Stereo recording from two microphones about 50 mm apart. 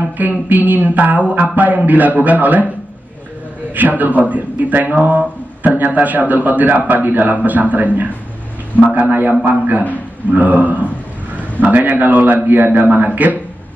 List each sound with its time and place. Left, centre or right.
0.2 s speech: right
4.0 s speech: right